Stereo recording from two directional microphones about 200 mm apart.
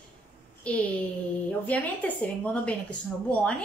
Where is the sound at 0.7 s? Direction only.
5° left (ahead or behind).